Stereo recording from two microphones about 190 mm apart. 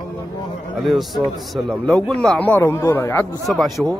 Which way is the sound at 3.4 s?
Centre (ahead or behind).